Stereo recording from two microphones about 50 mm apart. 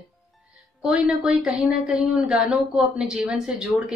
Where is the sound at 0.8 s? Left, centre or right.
Centre.